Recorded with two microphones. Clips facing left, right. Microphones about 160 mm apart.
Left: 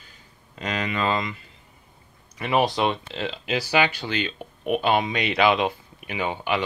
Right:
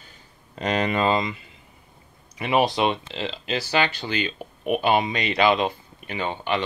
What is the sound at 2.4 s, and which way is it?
Speech, 10° right (ahead or behind).